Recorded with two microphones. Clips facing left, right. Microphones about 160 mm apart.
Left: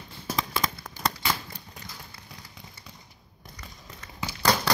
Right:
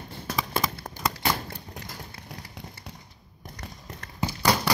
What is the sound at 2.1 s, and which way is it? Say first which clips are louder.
Vehicle: right 5 dB; 75° right (ahead or behind).